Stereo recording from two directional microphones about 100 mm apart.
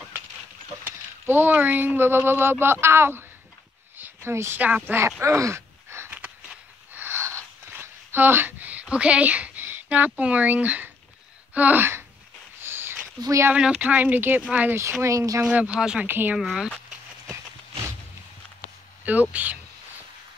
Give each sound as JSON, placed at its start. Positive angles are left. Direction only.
{"t": 0.8, "sound": "a woman's voice", "side_deg": -20}
{"t": 5.2, "sound": "groan", "side_deg": -30}
{"t": 6.1, "sound": "a sound", "side_deg": -15}
{"t": 11.5, "sound": "speech", "side_deg": -15}
{"t": 12.6, "sound": "a sound", "side_deg": -25}
{"t": 13.2, "sound": "speech", "side_deg": -30}
{"t": 13.7, "sound": "speech", "side_deg": -15}
{"t": 14.8, "sound": "speech", "side_deg": -25}
{"t": 15.4, "sound": "speech", "side_deg": -10}
{"t": 16.1, "sound": "speech", "side_deg": -20}
{"t": 16.3, "sound": "speech", "side_deg": -5}
{"t": 19.3, "sound": "speech", "side_deg": -15}